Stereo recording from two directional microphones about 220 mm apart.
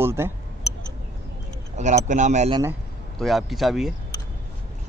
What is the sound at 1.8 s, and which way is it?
Speech, 30° right (ahead or behind).